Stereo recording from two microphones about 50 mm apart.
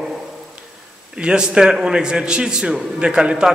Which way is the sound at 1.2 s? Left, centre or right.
Centre.